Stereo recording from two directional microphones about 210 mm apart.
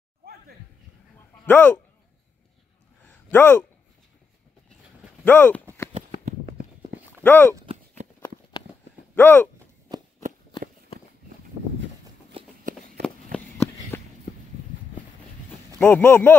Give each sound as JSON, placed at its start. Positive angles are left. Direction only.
{"t": 0.2, "sound": "a sound", "side_deg": -45}
{"t": 1.4, "sound": "speech", "side_deg": 10}
{"t": 3.1, "sound": "a sound", "side_deg": 10}
{"t": 5.2, "sound": "speech", "side_deg": 10}
{"t": 7.2, "sound": "speech", "side_deg": 10}
{"t": 9.1, "sound": "speech", "side_deg": 10}
{"t": 9.9, "sound": "a sound", "side_deg": -20}
{"t": 12.3, "sound": "walk", "side_deg": -25}
{"t": 13.0, "sound": "walk", "side_deg": 10}
{"t": 15.8, "sound": "speech", "side_deg": 10}